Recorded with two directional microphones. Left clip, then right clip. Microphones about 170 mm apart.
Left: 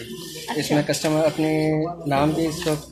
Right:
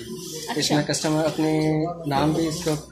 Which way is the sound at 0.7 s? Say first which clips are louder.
Left 4 dB; 20° left (ahead or behind).